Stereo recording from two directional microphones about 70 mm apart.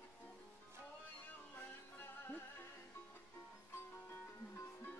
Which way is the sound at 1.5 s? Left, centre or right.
Left.